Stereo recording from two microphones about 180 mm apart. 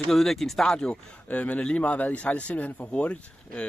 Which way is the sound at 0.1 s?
Centre (ahead or behind).